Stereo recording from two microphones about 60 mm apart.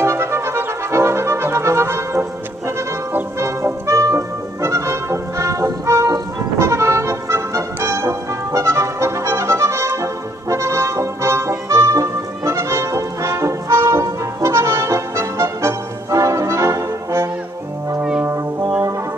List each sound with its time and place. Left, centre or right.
0.0 s music: right
3.3 s music: right
18.2 s brass instrument: right